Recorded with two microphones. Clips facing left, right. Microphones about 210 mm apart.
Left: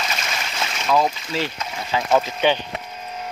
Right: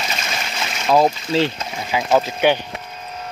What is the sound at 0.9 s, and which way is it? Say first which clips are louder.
Speech: right 5 dB; 30° right (ahead or behind).